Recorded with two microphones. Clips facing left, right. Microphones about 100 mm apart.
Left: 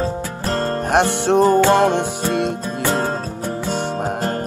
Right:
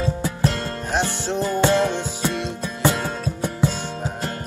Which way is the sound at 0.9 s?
60° left (ahead or behind).